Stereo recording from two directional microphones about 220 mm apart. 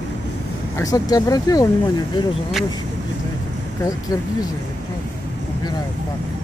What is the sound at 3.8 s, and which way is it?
Speech, 15° left (ahead or behind).